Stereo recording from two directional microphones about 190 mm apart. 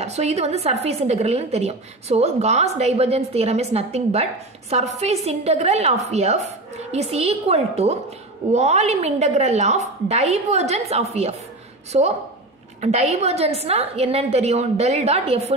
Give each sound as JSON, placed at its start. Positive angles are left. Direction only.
{"t": 0.0, "sound": "a woman's voice", "side_deg": -35}